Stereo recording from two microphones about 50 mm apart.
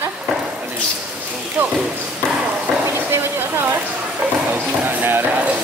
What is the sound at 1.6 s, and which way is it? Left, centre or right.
Speech, right.